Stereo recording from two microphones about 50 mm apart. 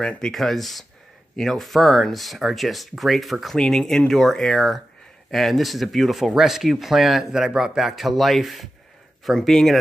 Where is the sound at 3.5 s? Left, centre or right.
Centre.